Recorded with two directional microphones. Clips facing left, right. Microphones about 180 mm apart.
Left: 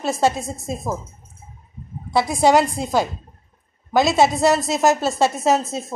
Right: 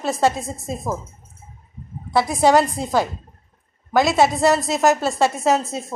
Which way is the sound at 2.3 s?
15° left (ahead or behind).